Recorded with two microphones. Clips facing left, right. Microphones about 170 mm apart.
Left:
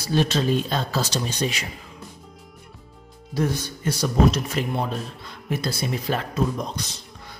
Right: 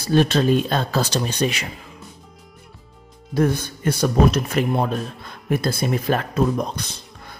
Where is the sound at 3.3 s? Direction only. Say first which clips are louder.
Right 5 dB; 55° right (ahead or behind).